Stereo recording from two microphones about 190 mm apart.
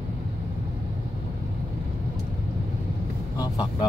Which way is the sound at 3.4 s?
20° left (ahead or behind).